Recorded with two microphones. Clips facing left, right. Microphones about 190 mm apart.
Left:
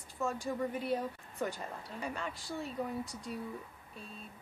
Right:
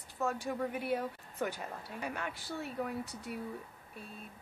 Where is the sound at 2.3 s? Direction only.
65° right (ahead or behind).